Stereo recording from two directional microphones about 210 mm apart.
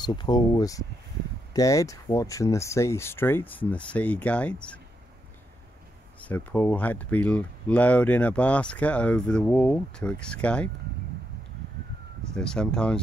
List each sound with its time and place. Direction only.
0.0 s speech: 20° left (ahead or behind)
6.2 s speech: 10° left (ahead or behind)
12.4 s speech: 5° left (ahead or behind)